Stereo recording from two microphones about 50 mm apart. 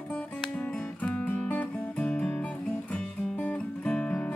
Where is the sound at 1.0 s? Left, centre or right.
Left.